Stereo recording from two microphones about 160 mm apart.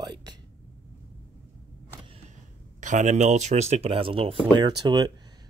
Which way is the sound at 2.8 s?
50° right (ahead or behind).